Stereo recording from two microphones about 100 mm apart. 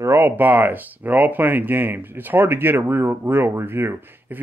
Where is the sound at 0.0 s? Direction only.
25° right (ahead or behind).